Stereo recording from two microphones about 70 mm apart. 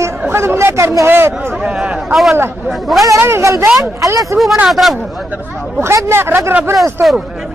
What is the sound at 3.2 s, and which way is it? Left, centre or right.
Speech, right.